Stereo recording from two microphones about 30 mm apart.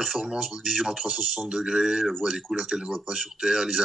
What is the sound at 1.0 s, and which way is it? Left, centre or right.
A man's voice, right.